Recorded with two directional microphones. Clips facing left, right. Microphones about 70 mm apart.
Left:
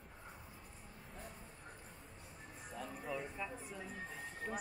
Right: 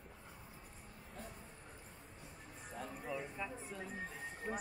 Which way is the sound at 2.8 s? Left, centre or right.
Centre.